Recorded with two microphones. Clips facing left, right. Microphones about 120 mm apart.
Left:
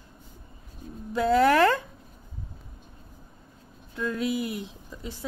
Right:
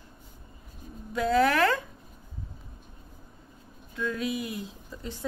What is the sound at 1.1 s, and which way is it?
Speech, 25° left (ahead or behind).